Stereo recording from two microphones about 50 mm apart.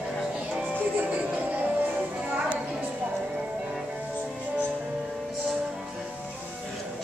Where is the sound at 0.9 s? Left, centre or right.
Right.